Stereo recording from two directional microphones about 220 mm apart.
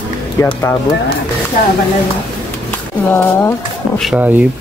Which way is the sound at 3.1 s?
10° left (ahead or behind).